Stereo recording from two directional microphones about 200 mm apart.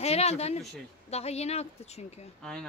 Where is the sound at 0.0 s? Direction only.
30° left (ahead or behind).